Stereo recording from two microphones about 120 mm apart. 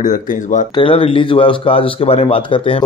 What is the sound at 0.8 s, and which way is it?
Speech, 50° left (ahead or behind).